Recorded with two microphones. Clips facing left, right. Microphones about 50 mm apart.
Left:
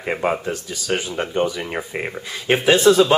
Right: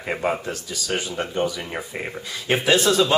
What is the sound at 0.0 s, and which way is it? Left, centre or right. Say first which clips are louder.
Speech: left 3 dB; centre.